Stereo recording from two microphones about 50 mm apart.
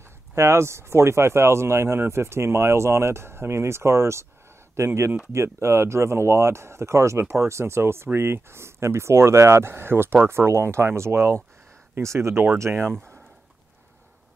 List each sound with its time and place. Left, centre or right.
0.3 s speech: right